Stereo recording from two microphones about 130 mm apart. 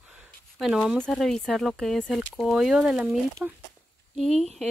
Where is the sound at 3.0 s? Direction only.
20° right (ahead or behind).